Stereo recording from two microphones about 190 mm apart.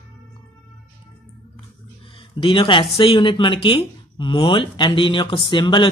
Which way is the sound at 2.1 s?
25° left (ahead or behind).